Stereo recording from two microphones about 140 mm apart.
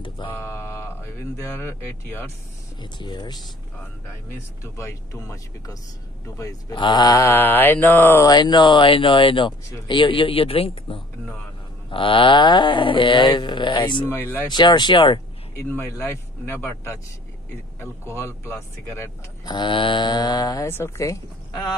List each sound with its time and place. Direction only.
0.3 s a sound: 15° left (ahead or behind)
1.6 s speech: 15° left (ahead or behind)
2.8 s speech: 35° left (ahead or behind)
4.7 s speech: 20° left (ahead or behind)
8.3 s speech: 30° left (ahead or behind)
14.0 s speech: 15° left (ahead or behind)
14.5 s speech: 30° left (ahead or behind)
15.5 s speech: 20° left (ahead or behind)
19.4 s speech: 30° left (ahead or behind)